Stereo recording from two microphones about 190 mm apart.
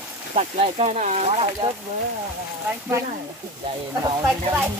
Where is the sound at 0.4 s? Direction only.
35° right (ahead or behind).